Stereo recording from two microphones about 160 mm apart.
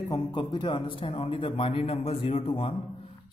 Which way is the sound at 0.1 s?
30° left (ahead or behind).